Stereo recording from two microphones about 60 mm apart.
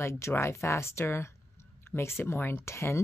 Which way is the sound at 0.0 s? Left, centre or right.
Left.